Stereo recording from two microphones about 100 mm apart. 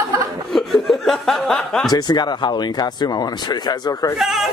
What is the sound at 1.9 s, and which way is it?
Speech, 45° left (ahead or behind).